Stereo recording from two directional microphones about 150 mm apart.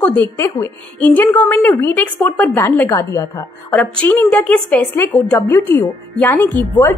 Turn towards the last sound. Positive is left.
turn(degrees=15)  # may be behind; listen again after turning